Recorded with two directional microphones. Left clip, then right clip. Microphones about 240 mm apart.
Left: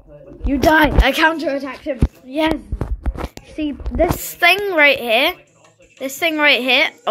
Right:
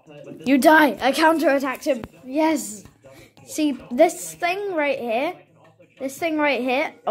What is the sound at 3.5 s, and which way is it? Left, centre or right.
A woman's voice, centre.